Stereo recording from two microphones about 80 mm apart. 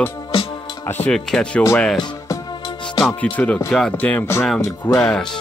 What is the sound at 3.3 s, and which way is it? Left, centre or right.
Speech, centre.